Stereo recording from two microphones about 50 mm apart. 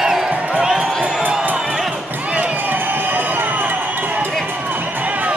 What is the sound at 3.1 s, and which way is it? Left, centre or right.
Run, right.